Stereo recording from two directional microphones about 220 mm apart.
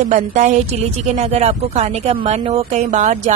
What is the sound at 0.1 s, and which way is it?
A woman's voice, 35° right (ahead or behind).